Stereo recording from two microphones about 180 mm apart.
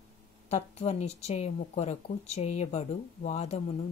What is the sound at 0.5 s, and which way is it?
Speech, 35° left (ahead or behind).